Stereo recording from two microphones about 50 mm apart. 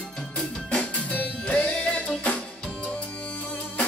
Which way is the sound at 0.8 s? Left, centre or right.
Left.